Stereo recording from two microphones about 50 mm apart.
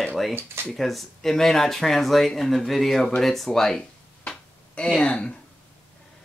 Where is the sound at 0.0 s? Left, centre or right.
Centre.